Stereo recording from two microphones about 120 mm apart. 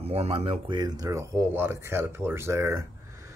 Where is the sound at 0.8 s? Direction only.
35° right (ahead or behind).